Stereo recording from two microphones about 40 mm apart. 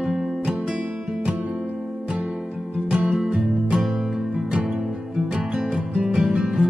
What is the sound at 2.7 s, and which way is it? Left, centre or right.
Music, right.